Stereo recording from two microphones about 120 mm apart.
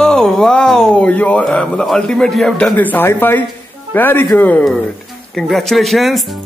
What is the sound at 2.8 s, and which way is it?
Speech, 15° left (ahead or behind).